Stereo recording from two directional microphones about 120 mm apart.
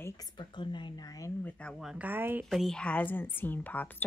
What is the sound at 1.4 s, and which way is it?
Speech, 10° left (ahead or behind).